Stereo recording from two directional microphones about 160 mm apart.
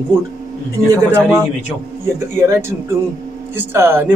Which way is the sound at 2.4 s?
15° right (ahead or behind).